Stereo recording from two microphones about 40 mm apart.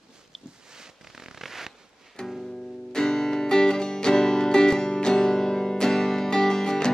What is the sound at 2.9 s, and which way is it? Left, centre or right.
Music, centre.